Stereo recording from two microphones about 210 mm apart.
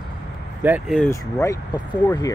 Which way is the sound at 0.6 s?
10° right (ahead or behind).